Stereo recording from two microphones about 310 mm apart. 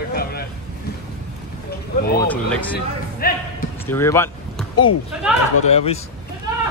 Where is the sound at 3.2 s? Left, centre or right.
Left.